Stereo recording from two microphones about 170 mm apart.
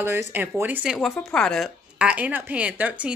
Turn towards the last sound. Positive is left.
turn(degrees=-10)  # may be behind; listen again after turning